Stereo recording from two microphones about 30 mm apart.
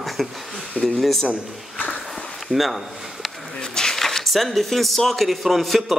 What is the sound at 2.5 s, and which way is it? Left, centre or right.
Speech, centre.